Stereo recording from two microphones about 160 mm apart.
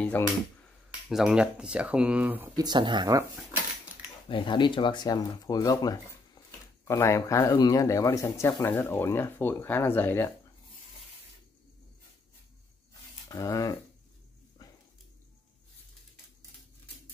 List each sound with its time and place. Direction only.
1.0 s speech: 5° right (ahead or behind)
2.5 s speech: 25° right (ahead or behind)
4.3 s speech: 30° left (ahead or behind); by 10.3 s 15° left (ahead or behind)
13.3 s speech: 20° left (ahead or behind)